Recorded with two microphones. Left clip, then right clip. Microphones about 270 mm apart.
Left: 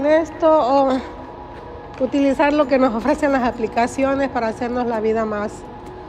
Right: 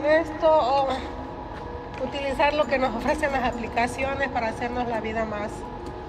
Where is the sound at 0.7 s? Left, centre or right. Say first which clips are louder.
Left 7 dB; left.